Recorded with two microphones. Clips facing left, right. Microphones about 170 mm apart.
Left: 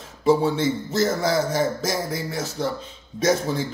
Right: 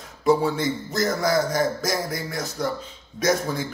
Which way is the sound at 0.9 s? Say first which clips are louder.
Even; 25° left (ahead or behind).